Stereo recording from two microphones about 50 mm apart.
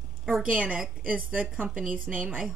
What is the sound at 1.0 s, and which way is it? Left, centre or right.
A woman's voice, right.